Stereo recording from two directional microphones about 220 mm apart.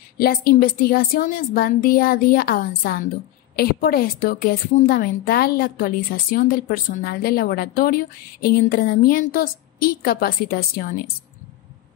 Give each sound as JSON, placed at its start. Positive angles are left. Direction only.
{"t": 0.2, "sound": "a woman's voice", "side_deg": 40}